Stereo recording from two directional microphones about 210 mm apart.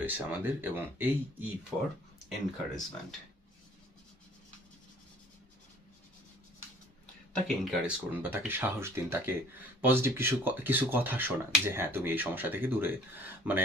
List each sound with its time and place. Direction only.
0.0 s speech: 10° right (ahead or behind)
2.5 s speech: centre (ahead or behind)
7.3 s speech: centre (ahead or behind)